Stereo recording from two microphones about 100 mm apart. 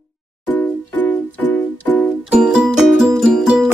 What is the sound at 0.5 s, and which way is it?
Music, 20° left (ahead or behind).